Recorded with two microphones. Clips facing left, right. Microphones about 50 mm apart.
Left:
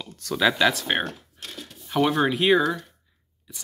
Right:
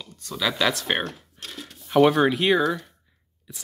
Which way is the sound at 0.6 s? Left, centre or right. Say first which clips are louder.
Left 2 dB; centre.